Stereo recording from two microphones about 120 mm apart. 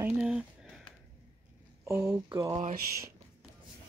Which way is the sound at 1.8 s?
25° right (ahead or behind).